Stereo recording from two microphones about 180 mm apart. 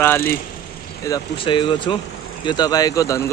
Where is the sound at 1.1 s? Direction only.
25° left (ahead or behind).